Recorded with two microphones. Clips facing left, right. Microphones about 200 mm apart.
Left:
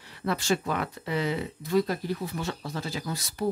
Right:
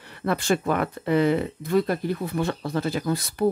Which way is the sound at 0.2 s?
55° right (ahead or behind).